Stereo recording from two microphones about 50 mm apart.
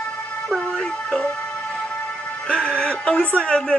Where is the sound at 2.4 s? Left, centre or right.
Centre.